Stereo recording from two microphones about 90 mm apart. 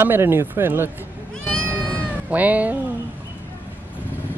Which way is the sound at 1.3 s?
10° left (ahead or behind).